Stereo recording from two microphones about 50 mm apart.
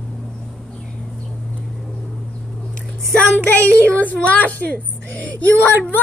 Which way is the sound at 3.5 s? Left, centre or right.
Left.